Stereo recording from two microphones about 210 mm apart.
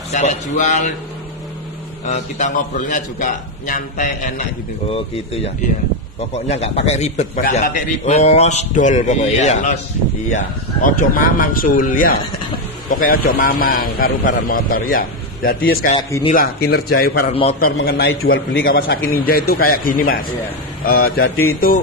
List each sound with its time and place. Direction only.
0.1 s a man's voice: 35° left (ahead or behind)
2.0 s a man's voice: 35° left (ahead or behind)
16.0 s speech: 20° left (ahead or behind)
16.3 s speech: 50° left (ahead or behind)
17.3 s speech: 30° left (ahead or behind)
17.7 s speech: 45° left (ahead or behind)
18.0 s a man's voice: 65° left (ahead or behind)
18.6 s speech: 45° left (ahead or behind)